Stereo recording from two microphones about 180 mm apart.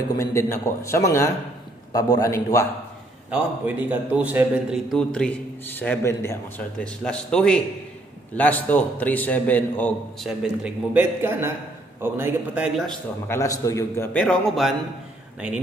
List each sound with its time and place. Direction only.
0.1 s a man's voice: 15° left (ahead or behind)
3.3 s a man's voice: 10° right (ahead or behind)
4.9 s a man's voice: 5° left (ahead or behind)
13.3 s a man's voice: 15° left (ahead or behind)